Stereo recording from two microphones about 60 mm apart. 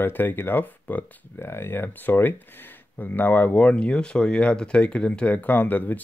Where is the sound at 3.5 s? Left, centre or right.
Centre.